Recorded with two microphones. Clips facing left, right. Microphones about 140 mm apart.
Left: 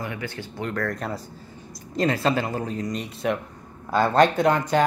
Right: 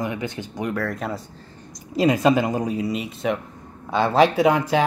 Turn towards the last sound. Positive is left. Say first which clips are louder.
# right 2 dB
turn(degrees=-5)  # may be behind; listen again after turning